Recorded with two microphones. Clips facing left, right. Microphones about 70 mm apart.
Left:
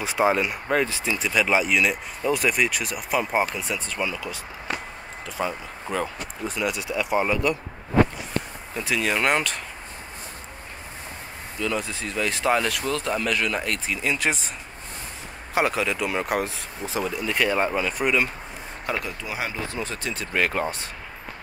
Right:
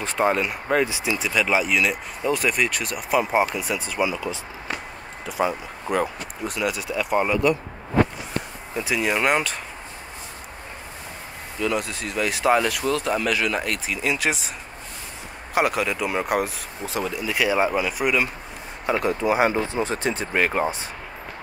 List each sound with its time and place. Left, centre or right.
0.0 s speech: centre
8.7 s speech: centre
11.6 s speech: centre
15.5 s speech: centre
19.0 s speech: right
19.7 s speech: right
20.3 s speech: centre